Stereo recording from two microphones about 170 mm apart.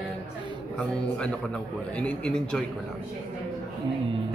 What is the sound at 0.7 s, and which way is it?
A man's voice, 5° left (ahead or behind).